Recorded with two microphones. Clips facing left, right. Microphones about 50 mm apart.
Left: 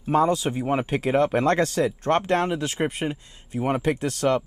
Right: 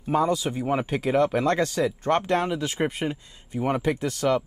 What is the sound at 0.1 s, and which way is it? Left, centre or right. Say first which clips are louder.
Speech: left 2 dB; left.